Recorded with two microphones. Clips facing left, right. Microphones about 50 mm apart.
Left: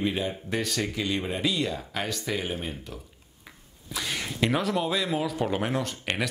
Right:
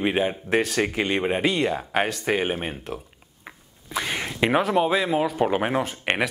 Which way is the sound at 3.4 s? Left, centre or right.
Right.